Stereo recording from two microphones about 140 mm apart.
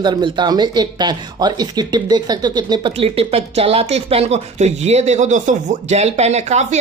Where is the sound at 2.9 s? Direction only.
40° right (ahead or behind).